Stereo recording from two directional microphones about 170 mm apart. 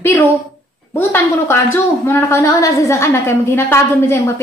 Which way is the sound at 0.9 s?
15° left (ahead or behind).